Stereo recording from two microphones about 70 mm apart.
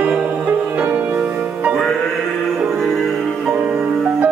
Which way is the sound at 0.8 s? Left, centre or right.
Centre.